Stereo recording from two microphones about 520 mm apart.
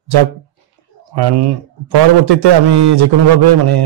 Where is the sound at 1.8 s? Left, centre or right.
Right.